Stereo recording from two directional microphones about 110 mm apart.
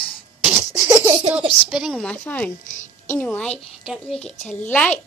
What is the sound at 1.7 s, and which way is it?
Speech, 5° right (ahead or behind).